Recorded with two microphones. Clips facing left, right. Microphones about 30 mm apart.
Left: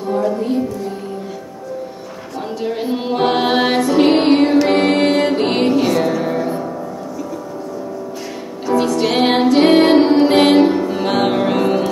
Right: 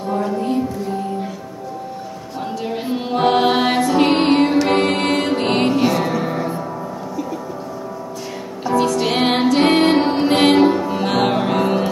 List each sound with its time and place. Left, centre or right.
0.0 s music: centre
2.3 s music: centre
8.7 s music: centre